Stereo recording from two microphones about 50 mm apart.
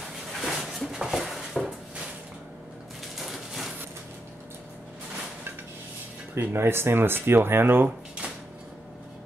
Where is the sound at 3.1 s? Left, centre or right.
Centre.